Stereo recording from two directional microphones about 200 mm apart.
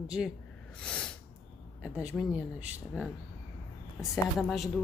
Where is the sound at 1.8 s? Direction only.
5° right (ahead or behind).